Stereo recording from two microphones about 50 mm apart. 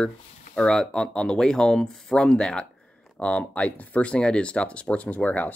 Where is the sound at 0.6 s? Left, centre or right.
Centre.